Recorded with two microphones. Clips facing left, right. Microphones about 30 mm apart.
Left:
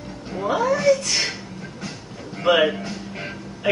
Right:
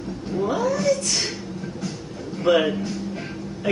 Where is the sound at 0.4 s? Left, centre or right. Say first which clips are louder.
Left 2 dB; left.